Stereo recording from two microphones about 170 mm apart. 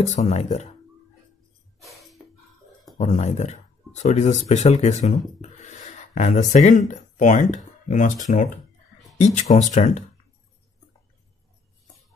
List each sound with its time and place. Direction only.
0.0 s speech: 45° left (ahead or behind)
1.8 s music: centre (ahead or behind)
3.0 s speech: 45° left (ahead or behind)